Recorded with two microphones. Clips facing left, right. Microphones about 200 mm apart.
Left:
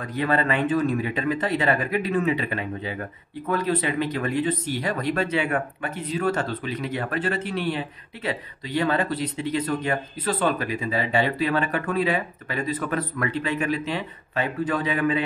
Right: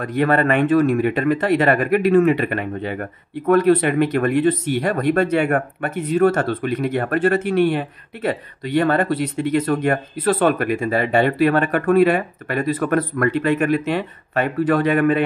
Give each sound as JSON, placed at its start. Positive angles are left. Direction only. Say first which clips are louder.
{"t": 0.0, "sound": "speech", "louder": "right 6 dB", "side_deg": -60}